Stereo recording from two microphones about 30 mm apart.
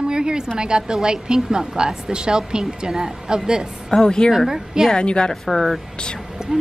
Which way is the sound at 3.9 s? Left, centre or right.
Left.